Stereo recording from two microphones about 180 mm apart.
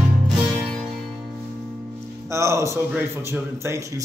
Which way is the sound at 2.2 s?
15° right (ahead or behind).